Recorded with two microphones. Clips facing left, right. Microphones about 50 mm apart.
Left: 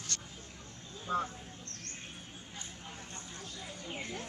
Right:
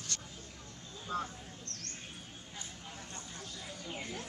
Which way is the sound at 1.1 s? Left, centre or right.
Centre.